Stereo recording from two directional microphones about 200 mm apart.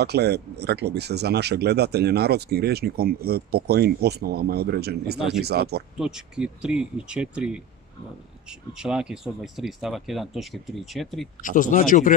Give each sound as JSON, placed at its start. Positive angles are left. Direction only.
{"t": 0.0, "sound": "speech", "side_deg": -55}
{"t": 5.9, "sound": "speech", "side_deg": -5}
{"t": 11.4, "sound": "speech", "side_deg": 40}